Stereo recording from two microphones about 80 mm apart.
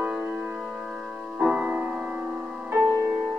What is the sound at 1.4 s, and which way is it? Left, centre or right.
Music, centre.